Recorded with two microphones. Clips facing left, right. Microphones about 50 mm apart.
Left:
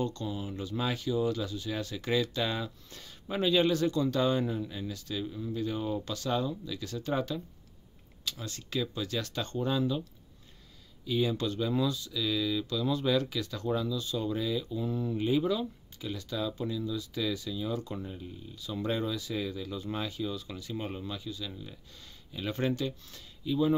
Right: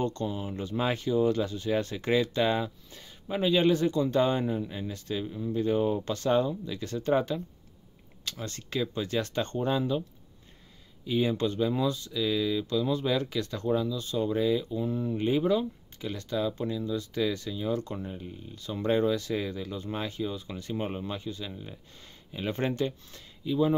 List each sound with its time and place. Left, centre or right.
0.0 s speech: right
5.2 s speech: centre
5.6 s speech: right
8.4 s speech: right
11.1 s speech: right
13.3 s speech: right
13.7 s speech: centre
14.1 s speech: right
17.5 s speech: right
17.9 s speech: centre
18.9 s speech: right
23.4 s speech: centre